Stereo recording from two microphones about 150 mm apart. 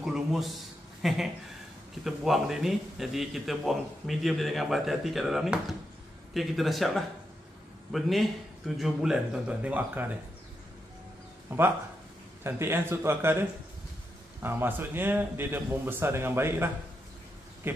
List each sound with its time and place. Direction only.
0.0 s a man's voice: centre (ahead or behind)
11.5 s a man's voice: 15° right (ahead or behind)